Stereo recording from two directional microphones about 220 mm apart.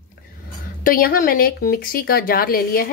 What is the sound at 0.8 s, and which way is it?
Speech, 40° left (ahead or behind).